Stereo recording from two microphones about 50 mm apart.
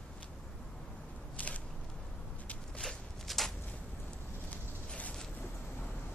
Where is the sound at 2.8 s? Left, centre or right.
Centre.